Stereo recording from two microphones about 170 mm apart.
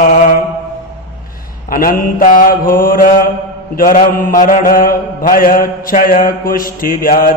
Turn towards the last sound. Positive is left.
turn(degrees=60)  # may be behind; listen again after turning